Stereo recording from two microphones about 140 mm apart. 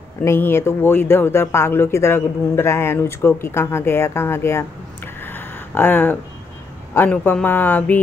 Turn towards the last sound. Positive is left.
turn(degrees=10)  # may be behind; listen again after turning